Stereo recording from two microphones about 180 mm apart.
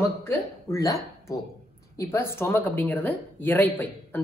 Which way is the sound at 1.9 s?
15° left (ahead or behind).